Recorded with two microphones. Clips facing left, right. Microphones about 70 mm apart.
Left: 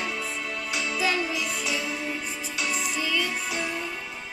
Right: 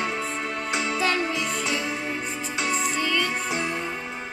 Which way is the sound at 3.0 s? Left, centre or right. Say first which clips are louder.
Right 1 dB; centre.